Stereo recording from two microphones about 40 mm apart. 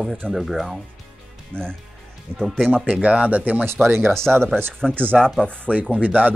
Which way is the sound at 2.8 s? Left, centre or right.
Right.